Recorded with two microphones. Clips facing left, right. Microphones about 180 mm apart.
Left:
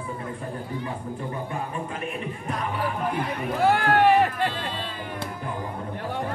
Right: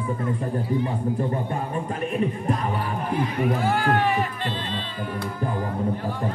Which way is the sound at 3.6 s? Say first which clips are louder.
Left 7 dB; 65° left (ahead or behind).